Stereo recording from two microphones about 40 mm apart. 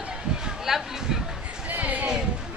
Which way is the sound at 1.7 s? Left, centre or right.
Right.